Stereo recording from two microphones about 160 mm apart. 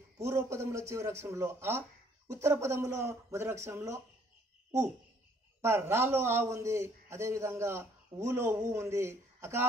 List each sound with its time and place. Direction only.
0.2 s a man's voice: 15° right (ahead or behind)
5.6 s a man's voice: 15° right (ahead or behind)